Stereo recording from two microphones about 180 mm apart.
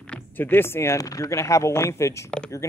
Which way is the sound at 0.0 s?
10° left (ahead or behind).